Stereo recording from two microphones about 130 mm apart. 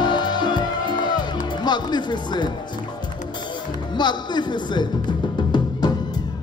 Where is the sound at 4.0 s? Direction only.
35° left (ahead or behind).